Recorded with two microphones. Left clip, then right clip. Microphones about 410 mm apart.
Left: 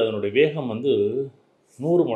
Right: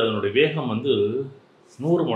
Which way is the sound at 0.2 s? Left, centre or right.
Left.